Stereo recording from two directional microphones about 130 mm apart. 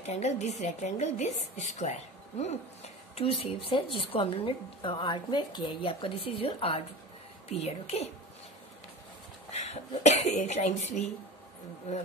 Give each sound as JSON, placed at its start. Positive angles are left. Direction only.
{"t": 0.0, "sound": "a woman's voice", "side_deg": 60}
{"t": 9.5, "sound": "speech", "side_deg": 60}